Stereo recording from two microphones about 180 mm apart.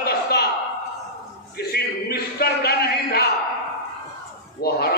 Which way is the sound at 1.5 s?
60° left (ahead or behind).